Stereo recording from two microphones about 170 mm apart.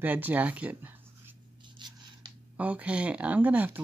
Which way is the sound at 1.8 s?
25° right (ahead or behind).